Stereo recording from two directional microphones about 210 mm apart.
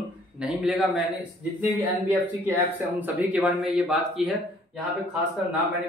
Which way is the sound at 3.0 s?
10° right (ahead or behind).